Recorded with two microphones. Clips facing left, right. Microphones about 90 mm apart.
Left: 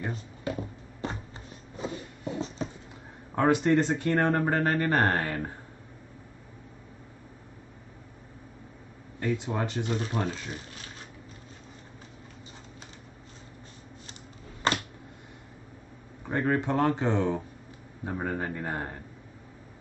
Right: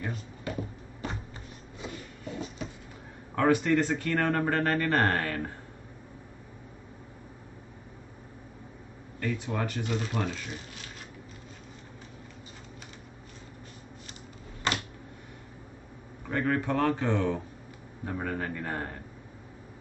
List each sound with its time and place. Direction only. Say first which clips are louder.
0.0 s speech: left 2 dB; 25° left (ahead or behind)
1.8 s shuffle: left 5 dB; 25° left (ahead or behind)
3.3 s speech: left 1 dB; 20° left (ahead or behind)
9.2 s speech: left 2 dB; 20° left (ahead or behind)
9.9 s speech: right 1 dB; 30° left (ahead or behind)
16.3 s speech: left 1 dB; 20° left (ahead or behind)